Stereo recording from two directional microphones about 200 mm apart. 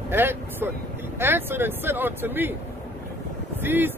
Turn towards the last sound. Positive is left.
turn(degrees=-10)  # may be behind; listen again after turning